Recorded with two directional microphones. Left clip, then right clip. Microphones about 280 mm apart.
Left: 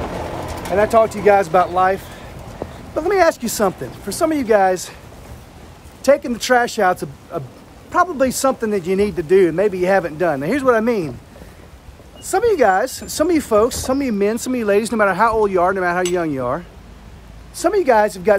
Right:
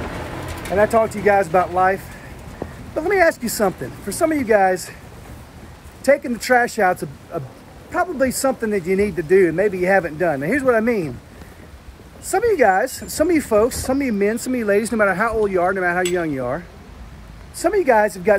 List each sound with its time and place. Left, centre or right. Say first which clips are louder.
0.1 s bird: left 4 dB; left
0.9 s speech: left 6 dB; centre
3.0 s speech: left 1 dB; centre
6.0 s speech: left 2 dB; centre
12.3 s speech: left 1 dB; centre